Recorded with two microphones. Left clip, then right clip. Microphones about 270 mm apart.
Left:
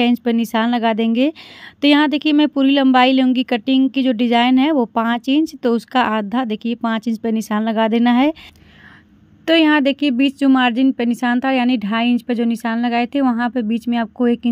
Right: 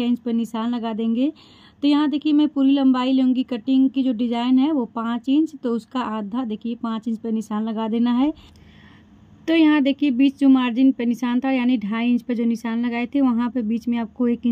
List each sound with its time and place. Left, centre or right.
0.0 s a woman's voice: left
9.5 s a woman's voice: centre